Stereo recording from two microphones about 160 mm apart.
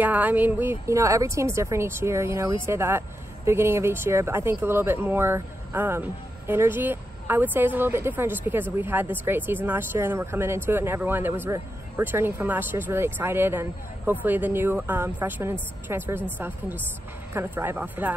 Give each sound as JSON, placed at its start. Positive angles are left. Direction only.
{"t": 0.0, "sound": "speech", "side_deg": -10}